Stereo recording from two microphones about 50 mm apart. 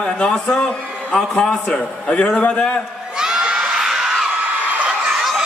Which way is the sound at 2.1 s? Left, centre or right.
Left.